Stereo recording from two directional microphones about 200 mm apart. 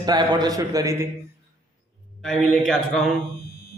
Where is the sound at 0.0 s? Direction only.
20° right (ahead or behind).